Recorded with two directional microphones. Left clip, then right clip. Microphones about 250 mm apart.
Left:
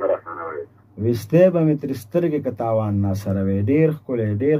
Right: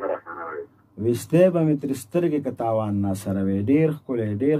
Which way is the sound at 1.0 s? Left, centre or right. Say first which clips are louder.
Left 3 dB; centre.